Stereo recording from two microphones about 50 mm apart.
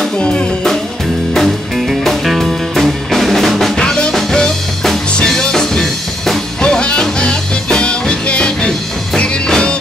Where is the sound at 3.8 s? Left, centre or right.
Centre.